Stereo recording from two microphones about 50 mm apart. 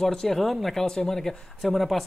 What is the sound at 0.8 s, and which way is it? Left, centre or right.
Speech, centre.